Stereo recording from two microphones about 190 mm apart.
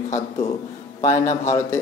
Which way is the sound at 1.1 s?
15° left (ahead or behind).